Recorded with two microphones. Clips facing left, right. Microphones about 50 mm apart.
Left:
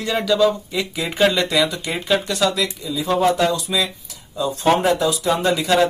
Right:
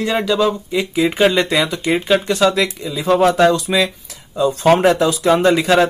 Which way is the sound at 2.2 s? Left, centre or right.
Right.